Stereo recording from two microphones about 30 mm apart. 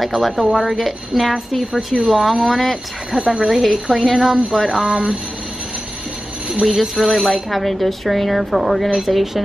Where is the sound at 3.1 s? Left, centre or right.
Right.